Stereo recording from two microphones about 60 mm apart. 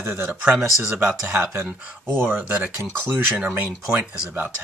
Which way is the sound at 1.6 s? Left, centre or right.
Right.